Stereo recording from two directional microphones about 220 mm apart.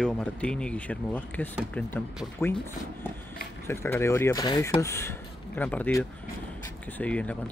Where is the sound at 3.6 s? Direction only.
10° left (ahead or behind).